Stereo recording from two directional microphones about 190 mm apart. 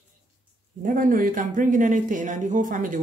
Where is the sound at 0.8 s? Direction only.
45° right (ahead or behind).